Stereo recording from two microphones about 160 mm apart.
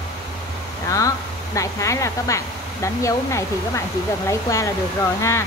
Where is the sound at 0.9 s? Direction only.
20° left (ahead or behind).